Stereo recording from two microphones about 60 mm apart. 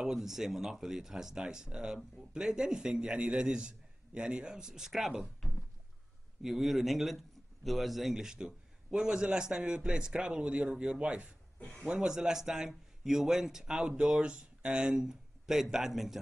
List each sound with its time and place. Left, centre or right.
0.0 s a man's voice: centre
6.4 s a man's voice: centre